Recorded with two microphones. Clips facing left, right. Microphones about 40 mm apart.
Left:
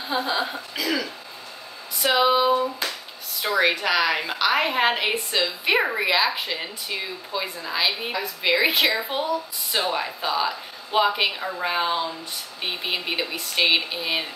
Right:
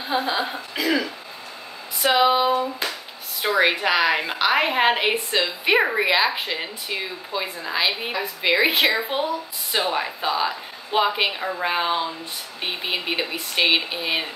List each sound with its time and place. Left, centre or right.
0.1 s speech: centre
2.0 s speech: centre
2.8 s a sound: centre
3.4 s speech: centre